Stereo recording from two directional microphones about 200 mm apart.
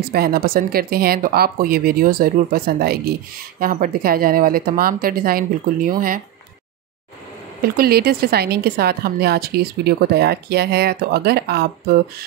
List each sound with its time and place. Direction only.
0.0 s speech: 50° right (ahead or behind)
7.6 s speech: 50° right (ahead or behind)